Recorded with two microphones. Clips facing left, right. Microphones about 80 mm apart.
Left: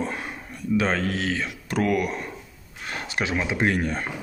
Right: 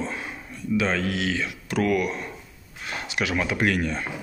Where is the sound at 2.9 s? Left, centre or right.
Left.